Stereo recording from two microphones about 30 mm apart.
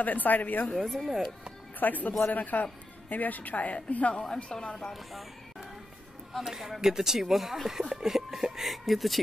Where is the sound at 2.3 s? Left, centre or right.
Left.